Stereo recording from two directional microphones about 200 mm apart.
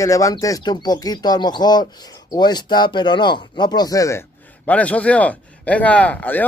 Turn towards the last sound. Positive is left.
turn(degrees=10)  # may be behind; listen again after turning